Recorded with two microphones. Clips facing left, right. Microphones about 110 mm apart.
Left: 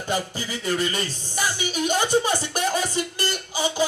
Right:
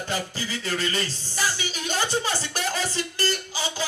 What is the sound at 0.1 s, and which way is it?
Music, 15° left (ahead or behind).